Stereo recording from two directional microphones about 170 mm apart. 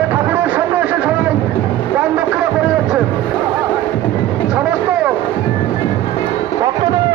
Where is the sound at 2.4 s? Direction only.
5° right (ahead or behind).